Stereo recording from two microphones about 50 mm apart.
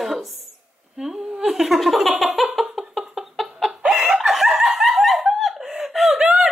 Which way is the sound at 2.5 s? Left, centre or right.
Centre.